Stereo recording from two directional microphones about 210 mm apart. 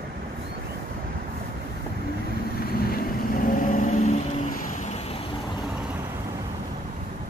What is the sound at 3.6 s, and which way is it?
Vehicle, 40° left (ahead or behind).